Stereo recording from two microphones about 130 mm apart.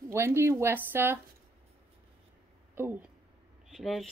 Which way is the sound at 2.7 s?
15° right (ahead or behind).